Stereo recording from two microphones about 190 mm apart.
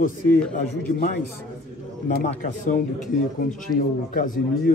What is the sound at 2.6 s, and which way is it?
A man's voice, 40° left (ahead or behind).